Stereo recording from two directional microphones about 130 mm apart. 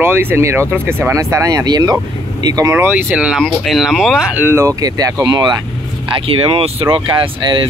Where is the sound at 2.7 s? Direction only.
15° right (ahead or behind); by 5.5 s 30° right (ahead or behind).